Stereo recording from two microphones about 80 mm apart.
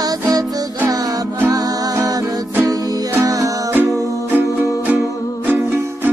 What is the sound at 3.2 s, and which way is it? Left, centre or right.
Music, right.